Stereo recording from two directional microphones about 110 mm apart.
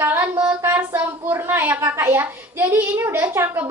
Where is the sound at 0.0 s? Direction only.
15° right (ahead or behind).